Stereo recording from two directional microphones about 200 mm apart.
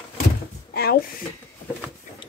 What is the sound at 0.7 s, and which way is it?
Speech, 50° left (ahead or behind).